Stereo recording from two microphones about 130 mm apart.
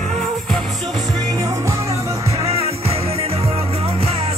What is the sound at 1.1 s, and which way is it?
Music, 30° right (ahead or behind).